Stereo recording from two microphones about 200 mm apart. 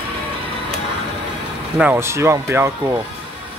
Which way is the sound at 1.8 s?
10° right (ahead or behind).